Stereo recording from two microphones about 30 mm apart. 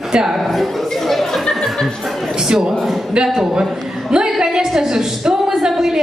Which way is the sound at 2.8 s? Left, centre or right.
Centre.